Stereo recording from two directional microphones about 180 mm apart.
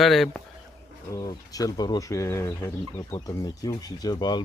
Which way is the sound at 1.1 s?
20° left (ahead or behind).